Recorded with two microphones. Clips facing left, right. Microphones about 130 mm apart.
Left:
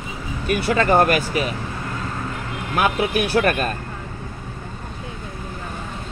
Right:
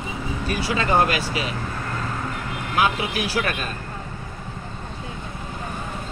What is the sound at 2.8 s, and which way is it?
Speech, 55° left (ahead or behind).